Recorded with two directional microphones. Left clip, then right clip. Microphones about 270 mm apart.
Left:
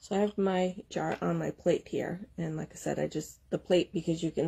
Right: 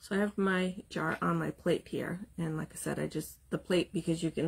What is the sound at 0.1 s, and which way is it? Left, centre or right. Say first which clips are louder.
Speech: left 2 dB; centre.